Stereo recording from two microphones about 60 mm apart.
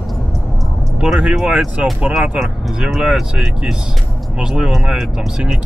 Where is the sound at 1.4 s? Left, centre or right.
Centre.